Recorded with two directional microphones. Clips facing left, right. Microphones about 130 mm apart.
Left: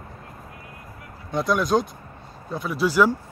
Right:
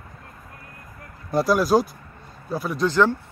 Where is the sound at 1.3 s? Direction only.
5° right (ahead or behind).